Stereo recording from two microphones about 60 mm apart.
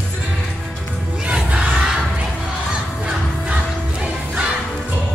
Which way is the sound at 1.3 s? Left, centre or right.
Centre.